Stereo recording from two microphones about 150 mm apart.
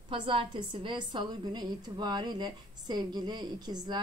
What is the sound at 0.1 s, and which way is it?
A woman's voice, 35° right (ahead or behind).